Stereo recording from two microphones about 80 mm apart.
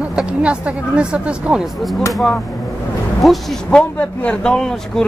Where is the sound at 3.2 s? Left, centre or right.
Centre.